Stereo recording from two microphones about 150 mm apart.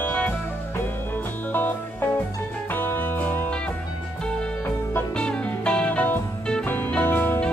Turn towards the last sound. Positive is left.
turn(degrees=15)  # may be behind; listen again after turning